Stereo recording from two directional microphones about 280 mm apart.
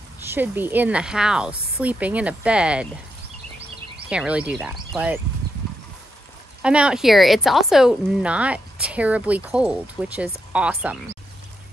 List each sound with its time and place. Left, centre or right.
0.3 s a woman's voice: centre
4.1 s a woman's voice: centre
6.6 s a woman's voice: centre